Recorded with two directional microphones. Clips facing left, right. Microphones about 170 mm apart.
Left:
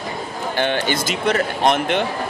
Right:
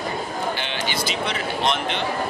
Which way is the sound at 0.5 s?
50° left (ahead or behind).